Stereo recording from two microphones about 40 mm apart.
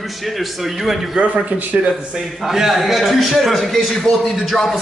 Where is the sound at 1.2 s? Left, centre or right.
Right.